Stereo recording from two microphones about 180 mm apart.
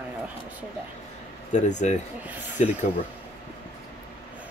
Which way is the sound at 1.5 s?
40° left (ahead or behind).